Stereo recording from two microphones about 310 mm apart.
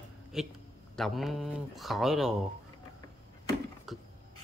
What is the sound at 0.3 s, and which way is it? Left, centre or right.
Speech, centre.